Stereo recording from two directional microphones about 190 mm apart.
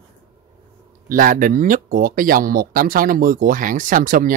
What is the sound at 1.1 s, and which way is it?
Speech, 45° right (ahead or behind).